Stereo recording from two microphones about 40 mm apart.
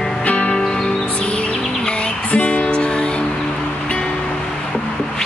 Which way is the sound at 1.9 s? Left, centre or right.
Left.